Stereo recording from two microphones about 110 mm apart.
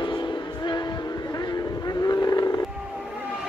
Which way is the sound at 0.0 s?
45° left (ahead or behind).